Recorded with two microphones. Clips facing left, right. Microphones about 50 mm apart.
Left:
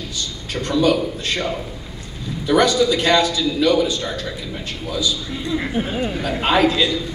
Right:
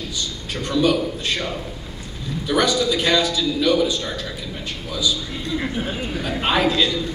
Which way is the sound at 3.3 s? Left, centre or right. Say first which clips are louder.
Left 2 dB; centre.